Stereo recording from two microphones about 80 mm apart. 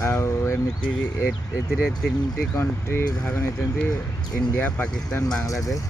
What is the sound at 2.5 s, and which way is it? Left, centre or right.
Speech, left.